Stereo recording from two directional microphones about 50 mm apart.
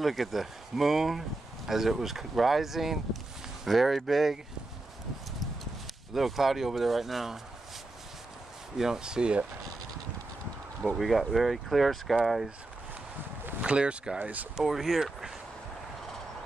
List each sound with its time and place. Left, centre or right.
0.0 s speech: centre
6.1 s speech: centre
8.7 s speech: centre
11.0 s speech: centre
13.6 s speech: right
14.2 s speech: right
14.6 s speech: centre